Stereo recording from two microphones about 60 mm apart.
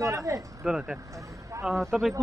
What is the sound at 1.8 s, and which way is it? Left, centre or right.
Speech, centre.